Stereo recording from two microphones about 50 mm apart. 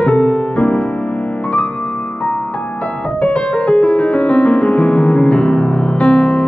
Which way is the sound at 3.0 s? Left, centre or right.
Left.